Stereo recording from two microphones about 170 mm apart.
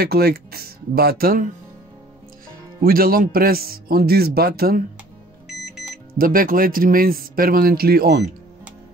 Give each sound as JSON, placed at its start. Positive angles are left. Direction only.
{"t": 0.0, "sound": "speech", "side_deg": -65}
{"t": 2.8, "sound": "speech", "side_deg": -60}
{"t": 6.1, "sound": "speech", "side_deg": -55}